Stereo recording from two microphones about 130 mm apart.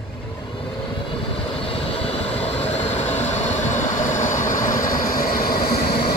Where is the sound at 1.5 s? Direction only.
45° left (ahead or behind); by 4.3 s 70° left (ahead or behind).